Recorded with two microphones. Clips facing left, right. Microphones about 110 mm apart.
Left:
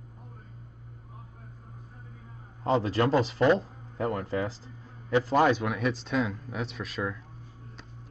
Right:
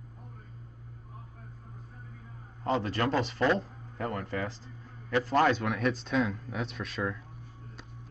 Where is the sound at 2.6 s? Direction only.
20° left (ahead or behind); by 7.1 s centre (ahead or behind).